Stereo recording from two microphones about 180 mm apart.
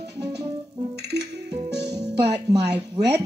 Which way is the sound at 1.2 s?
20° right (ahead or behind).